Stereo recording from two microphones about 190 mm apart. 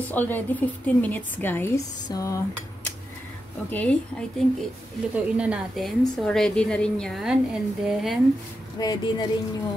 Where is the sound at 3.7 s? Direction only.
10° left (ahead or behind).